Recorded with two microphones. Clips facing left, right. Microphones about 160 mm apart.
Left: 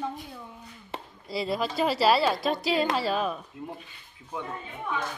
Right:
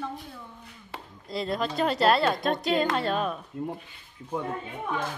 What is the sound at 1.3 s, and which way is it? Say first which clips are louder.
Speech: even; 5° left (ahead or behind).